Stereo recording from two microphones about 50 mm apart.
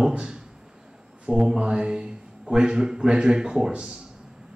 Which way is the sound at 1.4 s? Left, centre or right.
Centre.